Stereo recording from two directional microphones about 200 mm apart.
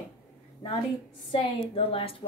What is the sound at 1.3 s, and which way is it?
Speech, 25° left (ahead or behind).